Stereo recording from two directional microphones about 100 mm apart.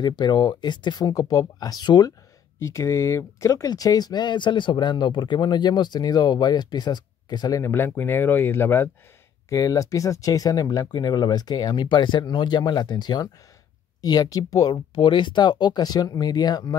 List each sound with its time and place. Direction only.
0.0 s speech: 50° left (ahead or behind)
2.6 s speech: 30° left (ahead or behind)
7.6 s speech: 25° left (ahead or behind)
9.5 s speech: 35° left (ahead or behind)
15.0 s speech: 55° left (ahead or behind)